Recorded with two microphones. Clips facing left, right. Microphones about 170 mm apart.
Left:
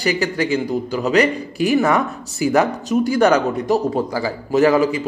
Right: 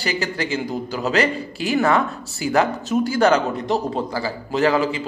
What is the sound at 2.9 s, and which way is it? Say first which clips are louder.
A man's voice: left 2 dB; centre (ahead or behind).